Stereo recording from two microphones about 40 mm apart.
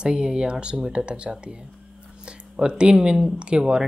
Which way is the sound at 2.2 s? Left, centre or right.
Right.